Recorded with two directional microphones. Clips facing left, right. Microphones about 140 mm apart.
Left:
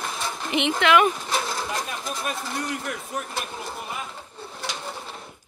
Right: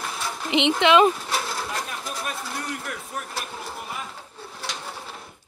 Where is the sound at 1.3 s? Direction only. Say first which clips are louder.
Left 1 dB; 5° right (ahead or behind).